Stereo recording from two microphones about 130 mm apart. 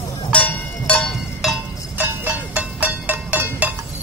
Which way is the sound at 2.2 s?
10° right (ahead or behind).